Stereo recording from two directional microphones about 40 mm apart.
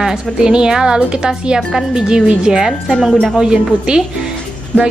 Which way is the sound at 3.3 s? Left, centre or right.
Centre.